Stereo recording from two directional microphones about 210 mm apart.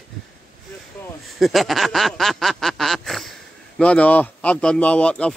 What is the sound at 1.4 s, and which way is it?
A man's voice, centre (ahead or behind).